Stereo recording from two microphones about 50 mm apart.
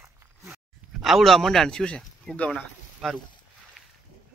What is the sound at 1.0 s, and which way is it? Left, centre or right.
Speech, centre.